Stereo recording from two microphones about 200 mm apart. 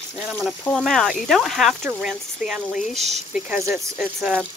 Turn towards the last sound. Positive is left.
turn(degrees=-5)  # may be behind; listen again after turning